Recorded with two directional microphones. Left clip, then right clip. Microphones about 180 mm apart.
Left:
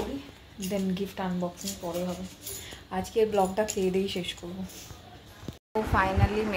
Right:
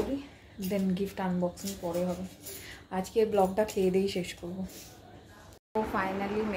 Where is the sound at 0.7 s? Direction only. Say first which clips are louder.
Even; 5° right (ahead or behind).